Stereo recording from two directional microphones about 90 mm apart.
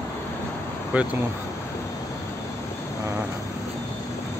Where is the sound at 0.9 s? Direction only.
15° right (ahead or behind).